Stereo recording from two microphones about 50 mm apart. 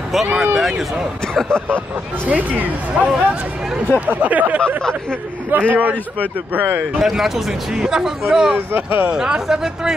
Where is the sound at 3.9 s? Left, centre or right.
Right.